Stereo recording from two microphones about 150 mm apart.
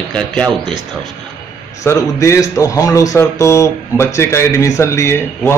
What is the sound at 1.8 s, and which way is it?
A man's voice, 20° left (ahead or behind).